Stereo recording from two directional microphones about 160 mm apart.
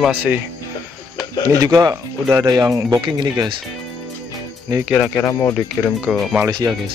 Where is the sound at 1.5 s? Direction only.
25° right (ahead or behind).